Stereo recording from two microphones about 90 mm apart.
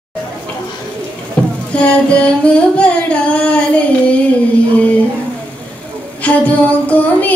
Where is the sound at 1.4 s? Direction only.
10° left (ahead or behind).